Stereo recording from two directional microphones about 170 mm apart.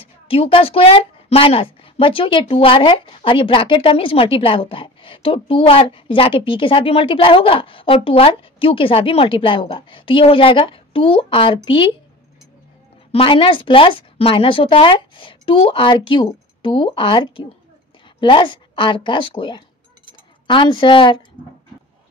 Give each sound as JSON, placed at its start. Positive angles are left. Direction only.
{"t": 0.0, "sound": "a woman's voice", "side_deg": 35}
{"t": 13.1, "sound": "a woman's voice", "side_deg": 30}